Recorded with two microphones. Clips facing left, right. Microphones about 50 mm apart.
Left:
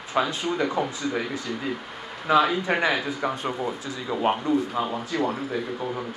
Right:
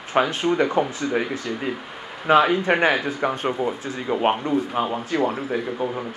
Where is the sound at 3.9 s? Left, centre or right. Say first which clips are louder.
Right 2 dB; right.